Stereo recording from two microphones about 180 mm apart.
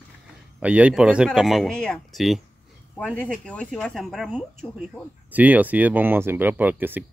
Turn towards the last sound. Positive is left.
turn(degrees=-10)  # may be behind; listen again after turning